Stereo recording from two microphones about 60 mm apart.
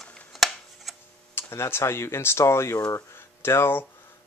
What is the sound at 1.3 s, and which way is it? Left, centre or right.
Speech, left.